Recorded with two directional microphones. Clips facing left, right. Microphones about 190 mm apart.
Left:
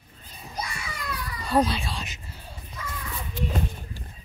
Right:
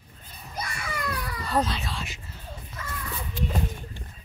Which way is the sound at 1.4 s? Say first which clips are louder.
Left 4 dB; 15° left (ahead or behind).